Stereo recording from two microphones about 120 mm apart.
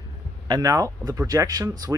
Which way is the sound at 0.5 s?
30° right (ahead or behind).